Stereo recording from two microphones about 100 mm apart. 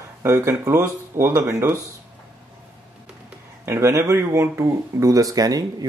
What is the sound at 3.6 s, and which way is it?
Speech, 25° right (ahead or behind).